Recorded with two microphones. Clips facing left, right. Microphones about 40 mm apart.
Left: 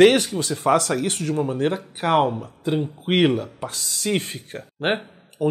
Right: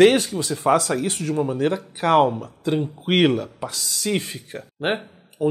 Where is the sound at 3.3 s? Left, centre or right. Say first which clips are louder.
Right 1 dB; centre.